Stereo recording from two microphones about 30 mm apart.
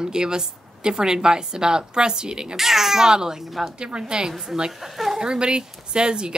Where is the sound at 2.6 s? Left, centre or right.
Centre.